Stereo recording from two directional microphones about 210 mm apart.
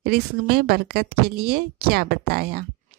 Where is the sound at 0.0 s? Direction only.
50° right (ahead or behind).